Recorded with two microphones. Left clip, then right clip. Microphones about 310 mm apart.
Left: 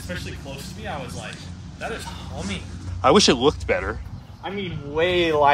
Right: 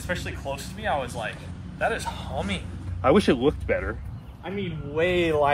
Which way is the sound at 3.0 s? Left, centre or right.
Centre.